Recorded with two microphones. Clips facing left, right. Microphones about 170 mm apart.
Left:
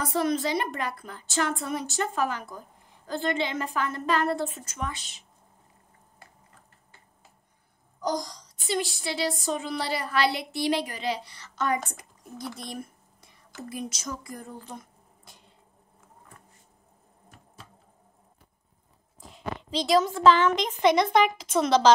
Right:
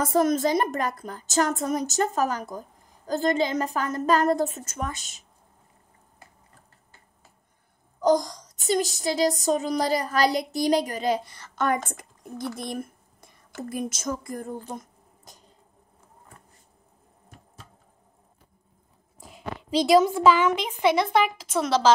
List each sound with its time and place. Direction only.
0.0 s a woman's voice: 45° right (ahead or behind)
8.0 s a woman's voice: 50° right (ahead or behind)
19.1 s speech: 10° right (ahead or behind)